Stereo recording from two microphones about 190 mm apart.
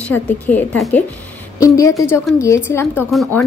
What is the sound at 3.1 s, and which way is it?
Speech, centre (ahead or behind).